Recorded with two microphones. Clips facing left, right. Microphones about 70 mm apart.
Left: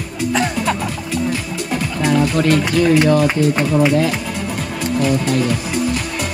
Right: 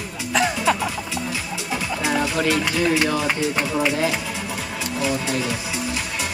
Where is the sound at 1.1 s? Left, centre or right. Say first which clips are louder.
Left 7 dB; left.